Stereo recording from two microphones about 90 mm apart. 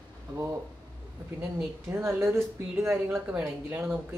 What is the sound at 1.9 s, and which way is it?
Speech, 30° right (ahead or behind).